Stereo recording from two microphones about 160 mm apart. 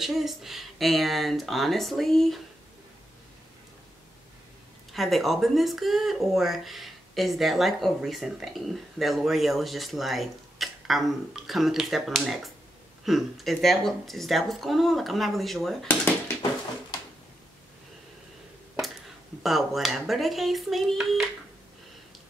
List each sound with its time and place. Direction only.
0.0 s speech: centre (ahead or behind)
4.9 s speech: centre (ahead or behind)
19.4 s speech: centre (ahead or behind)